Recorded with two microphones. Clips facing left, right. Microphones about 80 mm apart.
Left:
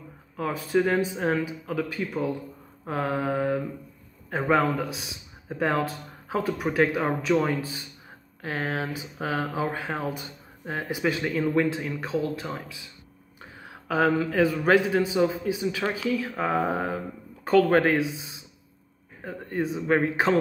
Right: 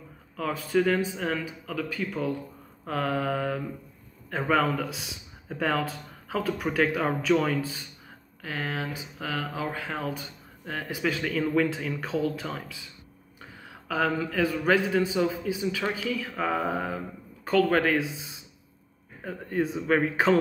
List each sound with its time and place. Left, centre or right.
0.4 s speech: centre
8.4 s speech: left
19.2 s speech: centre